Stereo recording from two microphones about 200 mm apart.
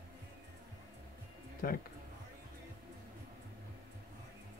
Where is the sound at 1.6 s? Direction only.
45° left (ahead or behind).